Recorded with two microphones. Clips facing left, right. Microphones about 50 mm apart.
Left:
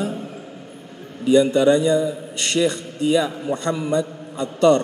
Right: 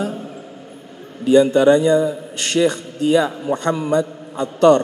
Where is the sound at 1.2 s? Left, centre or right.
Right.